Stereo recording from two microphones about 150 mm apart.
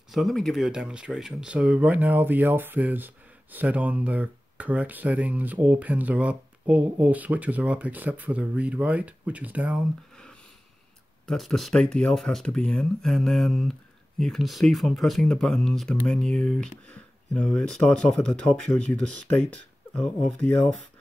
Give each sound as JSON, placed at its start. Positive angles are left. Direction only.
{"t": 0.1, "sound": "speech", "side_deg": 0}
{"t": 11.2, "sound": "speech", "side_deg": 0}